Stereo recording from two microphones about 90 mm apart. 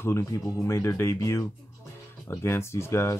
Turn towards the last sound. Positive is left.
turn(degrees=30)  # may be behind; listen again after turning